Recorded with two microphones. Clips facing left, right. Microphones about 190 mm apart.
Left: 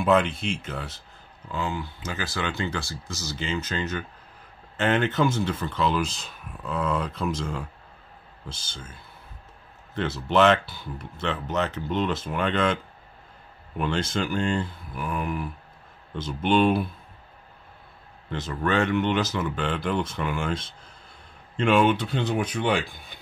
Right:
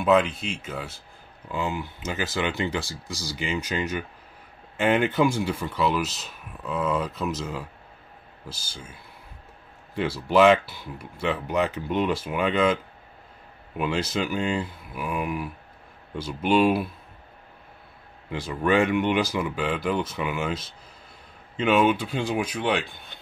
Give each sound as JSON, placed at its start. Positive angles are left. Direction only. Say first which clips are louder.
{"t": 0.0, "sound": "speech", "louder": "right 1 dB", "side_deg": -5}
{"t": 1.5, "sound": "speech", "louder": "right 1 dB", "side_deg": -15}
{"t": 9.9, "sound": "speech", "louder": "right 2 dB", "side_deg": -10}
{"t": 18.3, "sound": "speech", "louder": "right 3 dB", "side_deg": -10}